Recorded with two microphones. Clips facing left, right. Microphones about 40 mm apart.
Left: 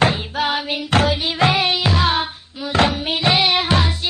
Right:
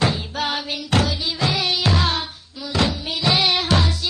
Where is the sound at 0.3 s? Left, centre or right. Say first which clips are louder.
Left 4 dB; centre.